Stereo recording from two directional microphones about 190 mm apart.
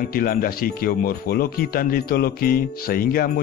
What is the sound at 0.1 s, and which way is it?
Speech, 50° left (ahead or behind).